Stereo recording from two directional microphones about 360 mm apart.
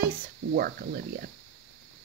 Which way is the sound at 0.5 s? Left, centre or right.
Right.